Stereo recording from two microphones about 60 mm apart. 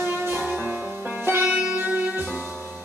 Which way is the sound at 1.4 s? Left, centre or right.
Centre.